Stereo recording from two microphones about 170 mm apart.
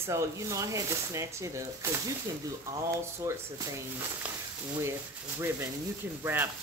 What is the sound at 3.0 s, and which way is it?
Speech, 15° right (ahead or behind).